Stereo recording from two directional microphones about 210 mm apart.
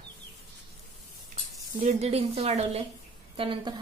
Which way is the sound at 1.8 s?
30° right (ahead or behind).